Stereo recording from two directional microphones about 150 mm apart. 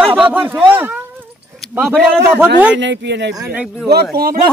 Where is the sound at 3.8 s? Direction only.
90° right.